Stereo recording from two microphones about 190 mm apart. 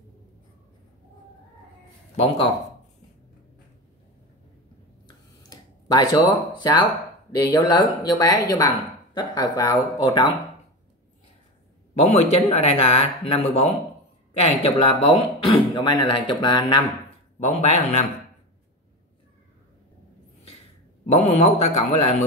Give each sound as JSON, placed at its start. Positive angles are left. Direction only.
{"t": 2.1, "sound": "speech", "side_deg": 30}
{"t": 5.0, "sound": "a sound", "side_deg": 20}
{"t": 7.8, "sound": "speech", "side_deg": 20}
{"t": 12.0, "sound": "speech", "side_deg": 35}
{"t": 17.4, "sound": "speech", "side_deg": 35}
{"t": 21.0, "sound": "speech", "side_deg": 35}